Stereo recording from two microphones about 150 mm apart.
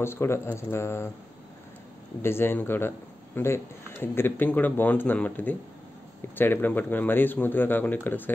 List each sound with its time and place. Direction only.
0.0 s speech: 15° left (ahead or behind)
2.2 s speech: 15° left (ahead or behind)